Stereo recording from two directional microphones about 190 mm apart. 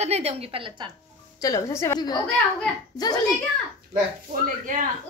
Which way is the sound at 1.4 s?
20° left (ahead or behind).